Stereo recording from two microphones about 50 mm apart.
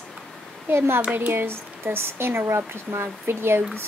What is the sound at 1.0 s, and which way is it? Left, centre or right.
Speech, right.